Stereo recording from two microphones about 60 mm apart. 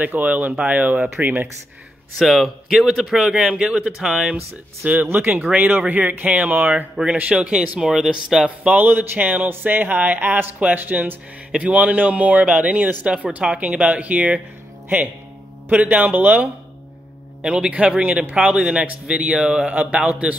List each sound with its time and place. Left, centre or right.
0.0 s speech: right
2.1 s speech: centre
3.3 s speech: centre
4.8 s speech: right; by 8.5 s centre
8.5 s speech: right
8.8 s speech: right
15.7 s speech: right
17.4 s speech: centre